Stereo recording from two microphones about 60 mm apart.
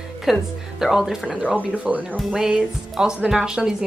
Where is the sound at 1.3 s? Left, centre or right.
Right.